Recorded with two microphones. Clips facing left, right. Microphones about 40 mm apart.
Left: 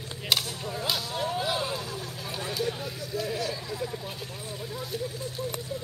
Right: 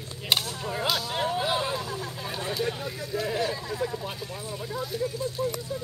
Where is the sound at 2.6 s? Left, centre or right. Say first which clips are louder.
Right 1 dB; right.